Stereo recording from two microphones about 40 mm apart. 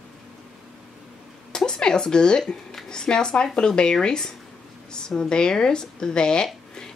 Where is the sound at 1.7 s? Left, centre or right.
Centre.